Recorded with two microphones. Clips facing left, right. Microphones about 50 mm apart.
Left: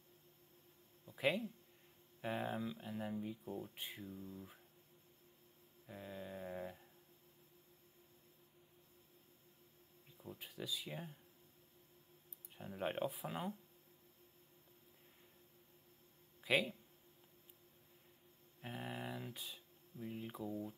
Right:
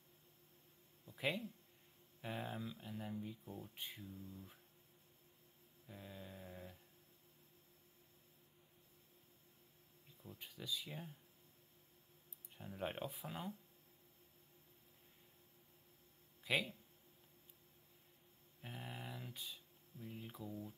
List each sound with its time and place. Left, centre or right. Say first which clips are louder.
1.0 s speech: left 4 dB; centre
5.9 s speech: left 5 dB; centre
6.5 s a sound: left 8 dB; left
10.1 s speech: left 5 dB; centre
12.5 s speech: left 4 dB; centre
16.4 s speech: left 3 dB; centre
18.6 s speech: left 5 dB; centre